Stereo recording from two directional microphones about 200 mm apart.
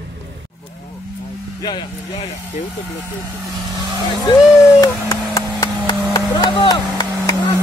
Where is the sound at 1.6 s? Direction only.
20° left (ahead or behind).